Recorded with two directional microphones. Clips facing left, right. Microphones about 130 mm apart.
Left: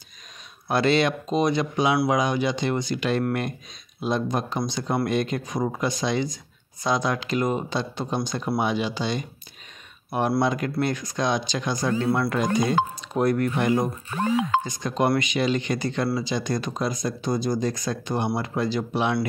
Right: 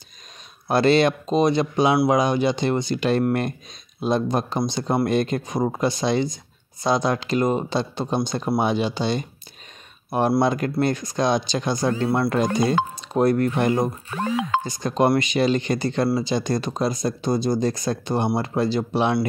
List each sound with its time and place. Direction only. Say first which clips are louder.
0.7 s speech: right 4 dB; 35° right (ahead or behind)
10.4 s speech: right 3 dB; 35° right (ahead or behind)